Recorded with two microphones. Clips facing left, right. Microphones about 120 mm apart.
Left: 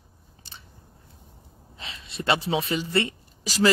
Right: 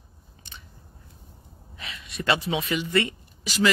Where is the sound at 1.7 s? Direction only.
30° left (ahead or behind).